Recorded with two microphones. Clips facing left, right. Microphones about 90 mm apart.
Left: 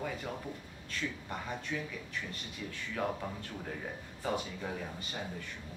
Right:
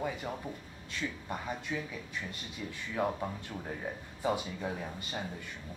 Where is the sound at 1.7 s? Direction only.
15° right (ahead or behind).